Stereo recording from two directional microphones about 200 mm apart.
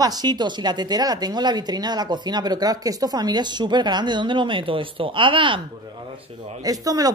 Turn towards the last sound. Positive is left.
turn(degrees=-20)  # may be behind; listen again after turning